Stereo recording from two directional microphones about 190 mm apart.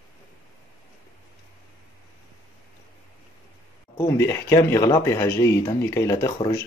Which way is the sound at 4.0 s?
15° left (ahead or behind).